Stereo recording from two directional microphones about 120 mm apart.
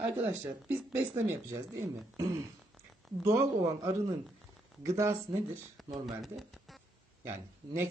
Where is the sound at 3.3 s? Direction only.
30° right (ahead or behind).